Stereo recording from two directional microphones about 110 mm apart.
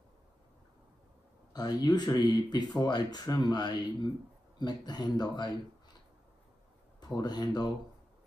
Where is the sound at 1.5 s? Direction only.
40° left (ahead or behind).